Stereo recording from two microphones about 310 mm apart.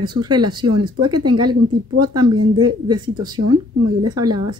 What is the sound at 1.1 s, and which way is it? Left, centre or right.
Speech, right.